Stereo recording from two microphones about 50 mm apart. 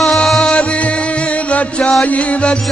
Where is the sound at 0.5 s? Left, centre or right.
Left.